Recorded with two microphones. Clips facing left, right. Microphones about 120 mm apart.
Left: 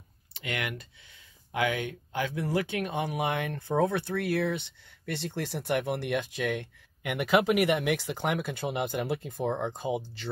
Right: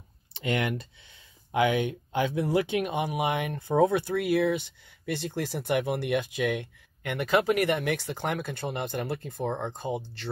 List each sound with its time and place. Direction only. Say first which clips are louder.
0.3 s speech: right 6 dB; 30° right (ahead or behind); by 6.7 s 5° right (ahead or behind)
7.0 s speech: even; 5° left (ahead or behind)